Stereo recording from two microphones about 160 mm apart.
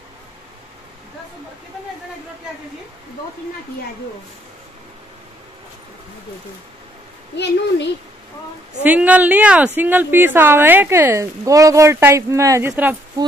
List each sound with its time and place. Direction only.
7.3 s a woman's voice: 90° left
8.8 s speech: 10° right (ahead or behind)